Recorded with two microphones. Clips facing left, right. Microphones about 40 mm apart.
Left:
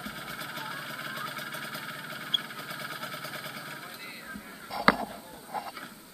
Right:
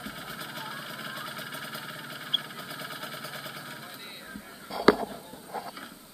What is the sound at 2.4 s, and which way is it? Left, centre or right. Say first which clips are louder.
Vehicle: left 1 dB; centre.